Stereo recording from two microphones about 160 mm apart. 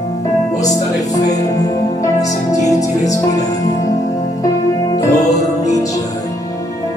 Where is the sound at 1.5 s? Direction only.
20° left (ahead or behind).